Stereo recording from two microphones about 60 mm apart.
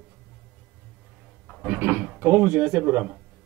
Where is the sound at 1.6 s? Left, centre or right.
Right.